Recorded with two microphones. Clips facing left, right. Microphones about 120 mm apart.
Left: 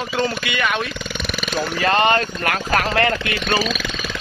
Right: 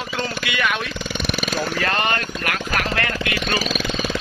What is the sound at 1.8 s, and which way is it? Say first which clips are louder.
Speech: left 9 dB; 25° left (ahead or behind).